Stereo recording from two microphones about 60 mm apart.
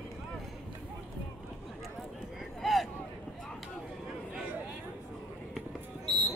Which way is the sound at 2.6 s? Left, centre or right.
Centre.